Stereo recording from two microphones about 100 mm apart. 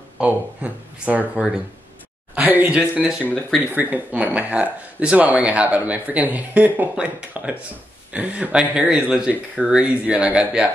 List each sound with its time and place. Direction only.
0.2 s speech: 15° right (ahead or behind)
3.3 s speech: 15° left (ahead or behind)
3.6 s speech: 15° right (ahead or behind)